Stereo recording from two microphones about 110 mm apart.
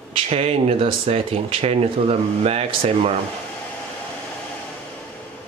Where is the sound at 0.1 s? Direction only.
60° right (ahead or behind).